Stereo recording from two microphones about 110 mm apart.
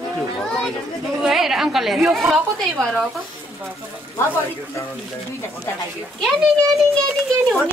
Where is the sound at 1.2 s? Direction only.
5° right (ahead or behind).